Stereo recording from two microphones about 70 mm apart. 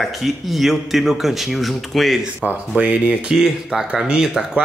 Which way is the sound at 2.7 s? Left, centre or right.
Centre.